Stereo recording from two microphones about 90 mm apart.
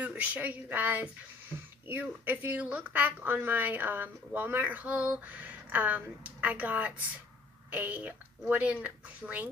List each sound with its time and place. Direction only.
0.0 s speech: 15° right (ahead or behind)